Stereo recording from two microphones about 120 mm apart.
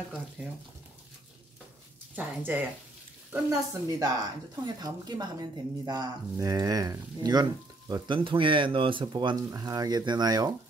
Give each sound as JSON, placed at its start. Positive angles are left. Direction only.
{"t": 0.4, "sound": "speech", "side_deg": -10}
{"t": 2.1, "sound": "speech", "side_deg": -15}
{"t": 3.4, "sound": "speech", "side_deg": -30}
{"t": 7.9, "sound": "speech", "side_deg": -45}